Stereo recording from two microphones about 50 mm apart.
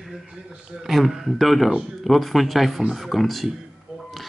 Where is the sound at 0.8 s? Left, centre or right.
Centre.